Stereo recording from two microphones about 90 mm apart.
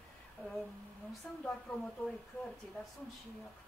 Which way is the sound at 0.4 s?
20° left (ahead or behind).